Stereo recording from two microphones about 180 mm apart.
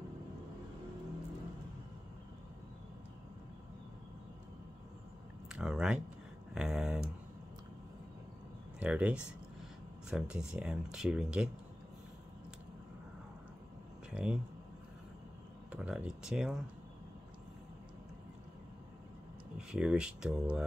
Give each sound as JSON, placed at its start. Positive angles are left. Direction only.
{"t": 5.5, "sound": "speech", "side_deg": -5}
{"t": 6.5, "sound": "a sound", "side_deg": -5}
{"t": 8.7, "sound": "speech", "side_deg": -5}
{"t": 14.1, "sound": "speech", "side_deg": -5}
{"t": 15.7, "sound": "speech", "side_deg": -5}
{"t": 19.7, "sound": "speech", "side_deg": -5}